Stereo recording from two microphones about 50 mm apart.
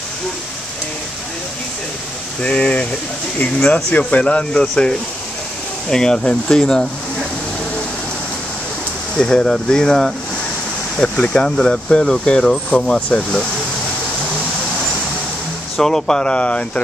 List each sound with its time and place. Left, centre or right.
2.4 s speech: left
4.1 s speech: left
9.1 s speech: centre
15.8 s speech: centre